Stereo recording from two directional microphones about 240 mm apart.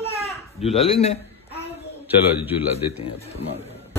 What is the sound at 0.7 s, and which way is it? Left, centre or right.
Speech, left.